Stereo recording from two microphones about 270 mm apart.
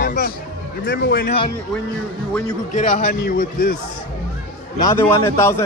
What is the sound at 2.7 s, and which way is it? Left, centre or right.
A man's voice, left.